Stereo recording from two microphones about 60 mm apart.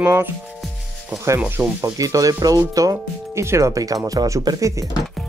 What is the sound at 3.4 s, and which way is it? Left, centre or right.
Speech, right.